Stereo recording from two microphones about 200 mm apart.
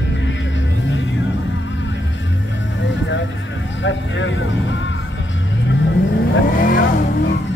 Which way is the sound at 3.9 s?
70° left (ahead or behind).